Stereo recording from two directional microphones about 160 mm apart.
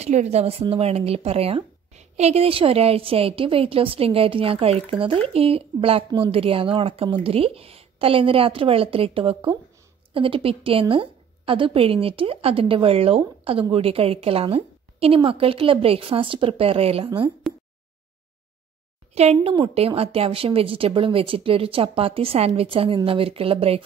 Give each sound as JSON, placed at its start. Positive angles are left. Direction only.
{"t": 0.0, "sound": "a woman's voice", "side_deg": -45}
{"t": 19.1, "sound": "a woman's voice", "side_deg": -40}